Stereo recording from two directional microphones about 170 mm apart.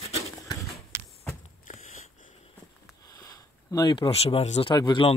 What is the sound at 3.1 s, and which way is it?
Speech, 20° left (ahead or behind).